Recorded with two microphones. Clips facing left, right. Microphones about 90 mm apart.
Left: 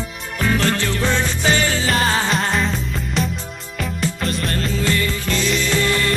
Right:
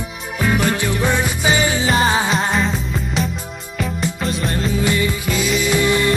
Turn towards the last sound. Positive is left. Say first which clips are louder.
# right 3 dB
turn(degrees=-15)  # may be behind; listen again after turning